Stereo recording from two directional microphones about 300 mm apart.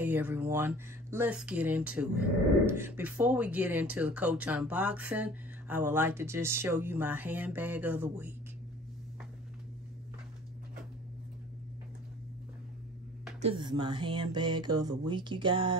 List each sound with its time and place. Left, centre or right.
0.0 s speech: centre
13.4 s speech: centre